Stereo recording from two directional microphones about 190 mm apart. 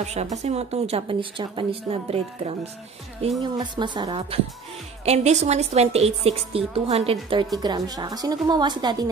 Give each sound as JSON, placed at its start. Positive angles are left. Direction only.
{"t": 0.0, "sound": "a woman's voice", "side_deg": -35}
{"t": 5.0, "sound": "a woman's voice", "side_deg": -35}